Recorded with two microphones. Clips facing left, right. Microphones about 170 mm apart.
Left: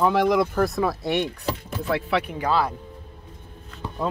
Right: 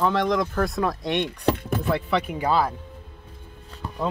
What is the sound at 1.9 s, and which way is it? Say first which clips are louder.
Speech: left 1 dB; centre (ahead or behind).